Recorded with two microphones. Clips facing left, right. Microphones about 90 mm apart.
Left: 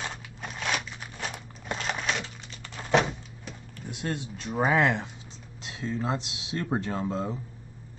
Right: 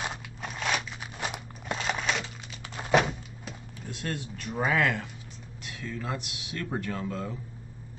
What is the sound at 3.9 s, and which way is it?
Speech, 20° left (ahead or behind).